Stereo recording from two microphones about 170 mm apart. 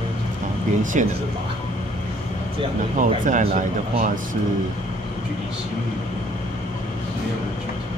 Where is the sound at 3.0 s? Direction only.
50° right (ahead or behind).